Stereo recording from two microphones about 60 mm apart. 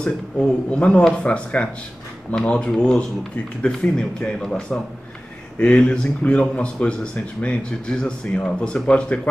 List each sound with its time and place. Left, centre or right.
0.0 s speech: centre